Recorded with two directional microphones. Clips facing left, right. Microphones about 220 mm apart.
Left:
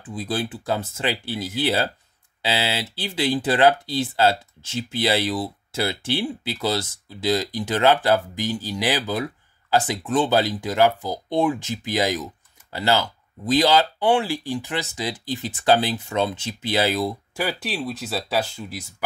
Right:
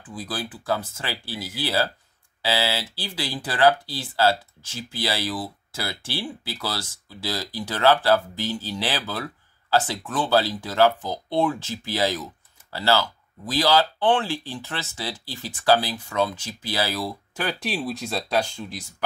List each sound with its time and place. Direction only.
0.1 s speech: 25° left (ahead or behind)
17.4 s speech: 5° left (ahead or behind)